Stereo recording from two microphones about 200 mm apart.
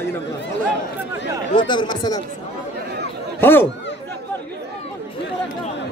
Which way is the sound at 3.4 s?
10° left (ahead or behind).